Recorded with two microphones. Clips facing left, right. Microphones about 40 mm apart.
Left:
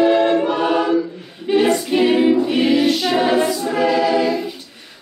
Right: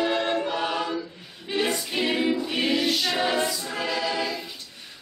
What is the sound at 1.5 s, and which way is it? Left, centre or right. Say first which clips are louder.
A capella: left 11 dB; centre.